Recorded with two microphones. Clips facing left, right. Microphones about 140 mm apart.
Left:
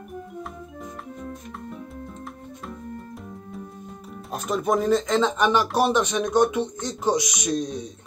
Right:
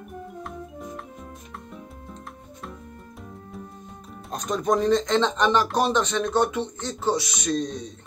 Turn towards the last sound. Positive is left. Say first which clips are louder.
# even
turn(degrees=10)  # may be behind; listen again after turning